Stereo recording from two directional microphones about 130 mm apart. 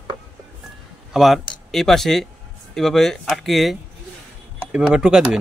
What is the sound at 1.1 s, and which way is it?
Speech, centre (ahead or behind).